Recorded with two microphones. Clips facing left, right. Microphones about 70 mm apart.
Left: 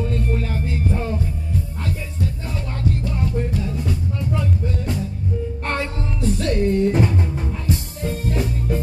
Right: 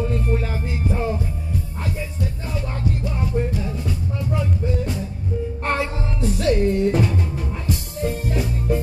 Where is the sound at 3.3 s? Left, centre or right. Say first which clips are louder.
Even; right; by 6.8 s centre.